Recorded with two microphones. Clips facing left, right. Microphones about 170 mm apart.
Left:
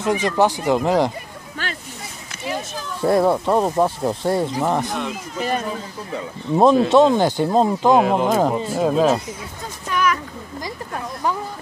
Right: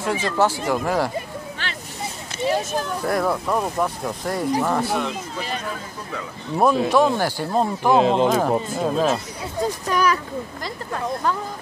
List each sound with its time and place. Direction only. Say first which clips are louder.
0.0 s speech: left 3 dB; 15° left (ahead or behind)
1.6 s vehicle: left 7 dB; 45° left (ahead or behind)
3.0 s speech: left 8 dB; 25° left (ahead or behind)
6.1 s speech: left 5 dB; 20° left (ahead or behind)
8.0 s speech: right 1 dB; 25° right (ahead or behind)
8.3 s speech: left 1 dB; 20° left (ahead or behind)
9.8 s speech: left 1 dB; 35° right (ahead or behind)